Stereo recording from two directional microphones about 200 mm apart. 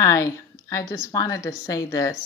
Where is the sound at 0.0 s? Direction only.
15° left (ahead or behind).